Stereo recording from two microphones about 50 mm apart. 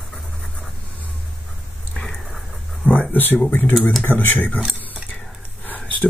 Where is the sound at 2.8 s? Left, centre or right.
Left.